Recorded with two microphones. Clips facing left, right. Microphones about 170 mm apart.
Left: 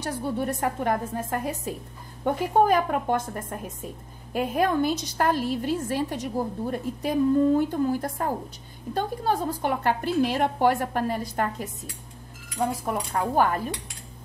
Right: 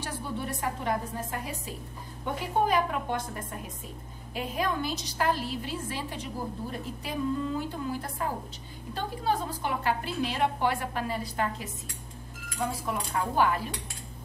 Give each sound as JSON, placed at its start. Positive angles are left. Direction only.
{"t": 0.0, "sound": "a woman's voice", "side_deg": 45}
{"t": 12.8, "sound": "a woman's voice", "side_deg": 45}